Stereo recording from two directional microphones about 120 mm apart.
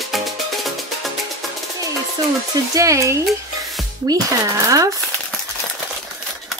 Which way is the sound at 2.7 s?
25° right (ahead or behind).